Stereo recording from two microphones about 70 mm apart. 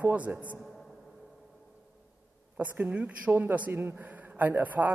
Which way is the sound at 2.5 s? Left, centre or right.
Right.